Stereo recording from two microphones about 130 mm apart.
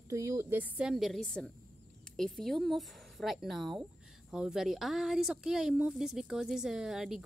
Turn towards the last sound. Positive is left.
turn(degrees=-5)  # may be behind; listen again after turning